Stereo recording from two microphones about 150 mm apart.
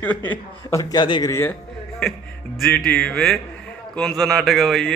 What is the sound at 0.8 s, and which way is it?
Speech, 30° left (ahead or behind).